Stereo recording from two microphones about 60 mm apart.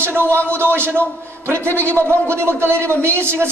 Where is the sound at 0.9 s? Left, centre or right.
Left.